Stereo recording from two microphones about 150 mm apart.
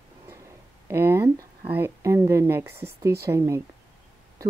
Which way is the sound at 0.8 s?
15° right (ahead or behind).